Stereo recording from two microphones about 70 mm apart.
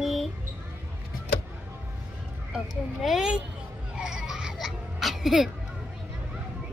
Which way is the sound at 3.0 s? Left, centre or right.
Centre.